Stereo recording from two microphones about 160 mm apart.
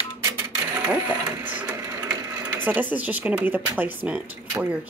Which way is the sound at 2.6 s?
10° right (ahead or behind).